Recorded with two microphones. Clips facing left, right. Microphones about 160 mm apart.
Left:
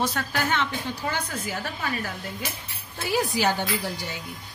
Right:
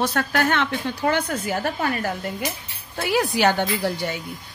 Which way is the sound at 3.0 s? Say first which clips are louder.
Right 4 dB; 70° right (ahead or behind).